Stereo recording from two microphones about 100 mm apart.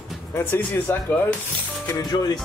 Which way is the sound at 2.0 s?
45° left (ahead or behind).